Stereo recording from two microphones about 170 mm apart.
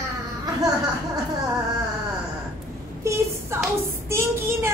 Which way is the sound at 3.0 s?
15° right (ahead or behind).